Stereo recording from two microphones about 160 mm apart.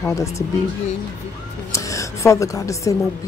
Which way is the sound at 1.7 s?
20° left (ahead or behind).